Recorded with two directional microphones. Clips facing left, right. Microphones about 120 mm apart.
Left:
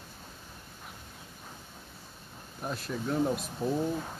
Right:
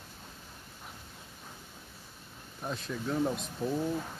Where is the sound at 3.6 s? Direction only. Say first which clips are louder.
Left 1 dB; 30° left (ahead or behind).